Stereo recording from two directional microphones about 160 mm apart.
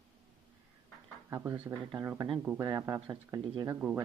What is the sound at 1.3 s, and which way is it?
Speech, 10° right (ahead or behind).